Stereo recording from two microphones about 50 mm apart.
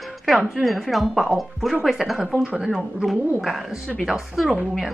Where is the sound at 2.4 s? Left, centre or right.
Centre.